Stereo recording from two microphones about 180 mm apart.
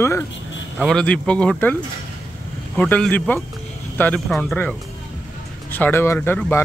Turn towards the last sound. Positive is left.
turn(degrees=10)  # may be behind; listen again after turning